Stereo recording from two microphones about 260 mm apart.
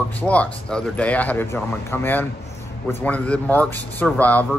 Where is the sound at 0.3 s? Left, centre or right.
Centre.